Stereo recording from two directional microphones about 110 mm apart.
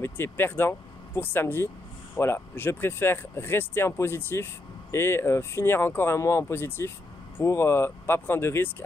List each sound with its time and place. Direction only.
0.0 s speech: 20° left (ahead or behind)